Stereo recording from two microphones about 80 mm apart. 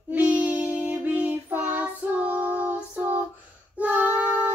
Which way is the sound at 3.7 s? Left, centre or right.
Centre.